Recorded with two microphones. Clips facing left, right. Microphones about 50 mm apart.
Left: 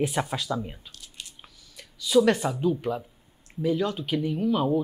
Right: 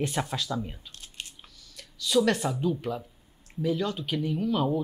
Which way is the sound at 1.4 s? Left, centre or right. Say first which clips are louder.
Left 1 dB; centre.